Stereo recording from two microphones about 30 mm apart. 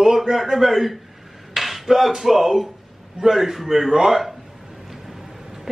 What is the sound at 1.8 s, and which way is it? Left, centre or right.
A man's voice, centre.